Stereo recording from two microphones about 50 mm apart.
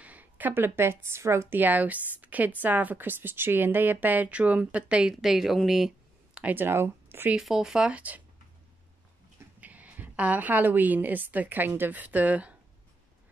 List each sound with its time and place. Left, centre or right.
0.0 s a woman's voice: right
1.5 s a woman's voice: right
5.2 s speech: centre
6.4 s a woman's voice: right
6.7 s speech: right
7.3 s speech: centre
7.9 s a woman's voice: right
9.6 s a woman's voice: right